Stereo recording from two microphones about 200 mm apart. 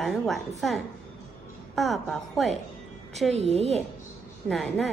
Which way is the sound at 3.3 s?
30° right (ahead or behind).